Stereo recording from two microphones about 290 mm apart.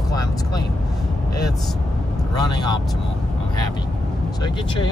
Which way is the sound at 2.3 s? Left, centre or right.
Centre.